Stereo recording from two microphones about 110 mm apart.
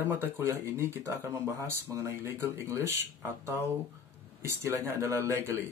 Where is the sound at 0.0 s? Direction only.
20° right (ahead or behind).